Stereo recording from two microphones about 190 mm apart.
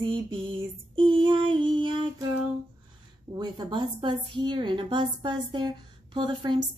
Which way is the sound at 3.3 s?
20° right (ahead or behind).